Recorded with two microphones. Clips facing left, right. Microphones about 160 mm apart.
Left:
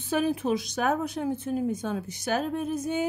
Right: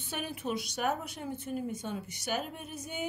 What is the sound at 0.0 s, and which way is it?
A woman's voice, 90° left.